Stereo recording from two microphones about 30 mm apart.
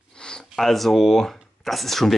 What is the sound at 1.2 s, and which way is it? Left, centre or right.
Speech, centre.